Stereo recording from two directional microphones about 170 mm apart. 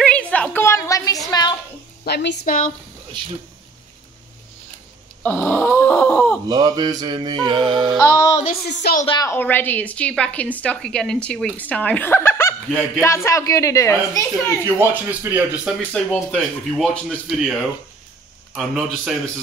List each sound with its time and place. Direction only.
0.0 s a sound: 5° left (ahead or behind); by 1.6 s 25° left (ahead or behind)
2.0 s a woman's voice: 75° left (ahead or behind)
2.4 s speech: 50° left (ahead or behind)
5.2 s dog: 10° left (ahead or behind)
6.5 s music: 25° right (ahead or behind)
9.0 s a woman's voice: 30° left (ahead or behind)
9.3 s a woman's voice: 10° left (ahead or behind)
12.6 s speech: 5° left (ahead or behind)
13.0 s a woman's voice: 15° left (ahead or behind)
14.6 s speech: 10° right (ahead or behind)
15.9 s speech: 5° left (ahead or behind)